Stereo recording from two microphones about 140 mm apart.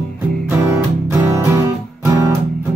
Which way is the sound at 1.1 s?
25° right (ahead or behind).